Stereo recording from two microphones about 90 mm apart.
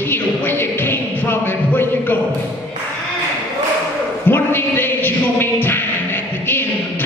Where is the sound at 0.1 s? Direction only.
25° left (ahead or behind).